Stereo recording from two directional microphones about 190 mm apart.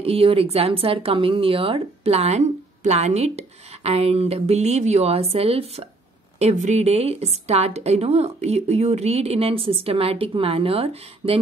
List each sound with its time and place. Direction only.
0.0 s speech: 30° right (ahead or behind)